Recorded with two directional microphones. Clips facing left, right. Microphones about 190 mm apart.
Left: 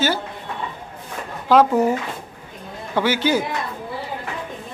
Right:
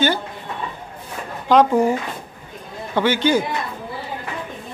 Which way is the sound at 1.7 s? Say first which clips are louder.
Right 1 dB; 10° right (ahead or behind).